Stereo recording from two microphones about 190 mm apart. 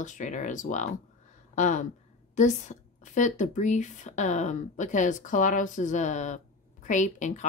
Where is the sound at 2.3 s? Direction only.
40° left (ahead or behind).